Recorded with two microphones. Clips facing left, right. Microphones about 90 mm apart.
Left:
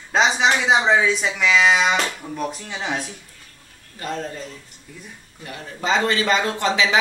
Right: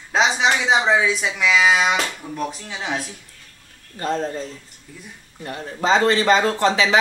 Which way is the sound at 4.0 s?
35° right (ahead or behind).